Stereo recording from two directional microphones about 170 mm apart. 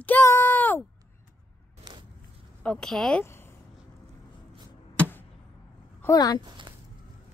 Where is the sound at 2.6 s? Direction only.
5° left (ahead or behind).